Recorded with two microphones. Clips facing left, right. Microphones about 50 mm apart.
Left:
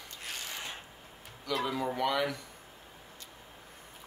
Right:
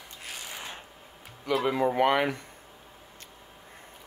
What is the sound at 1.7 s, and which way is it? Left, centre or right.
Speech, right.